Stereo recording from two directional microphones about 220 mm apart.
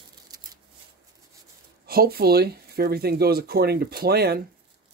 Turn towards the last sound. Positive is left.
turn(degrees=-45)  # may be behind; listen again after turning